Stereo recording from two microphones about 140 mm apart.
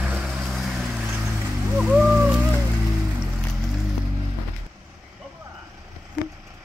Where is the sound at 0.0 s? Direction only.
10° right (ahead or behind).